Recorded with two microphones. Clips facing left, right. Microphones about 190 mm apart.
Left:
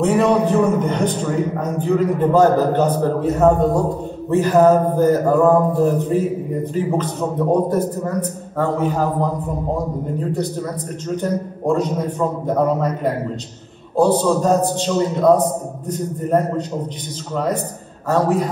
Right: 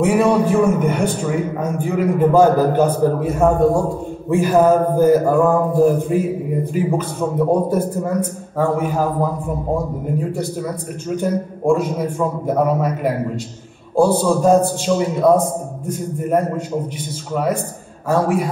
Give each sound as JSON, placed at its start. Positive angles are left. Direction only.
{"t": 0.0, "sound": "mantra", "side_deg": -10}